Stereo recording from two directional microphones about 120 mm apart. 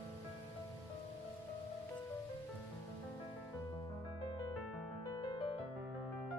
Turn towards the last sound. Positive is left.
turn(degrees=40)  # may be behind; listen again after turning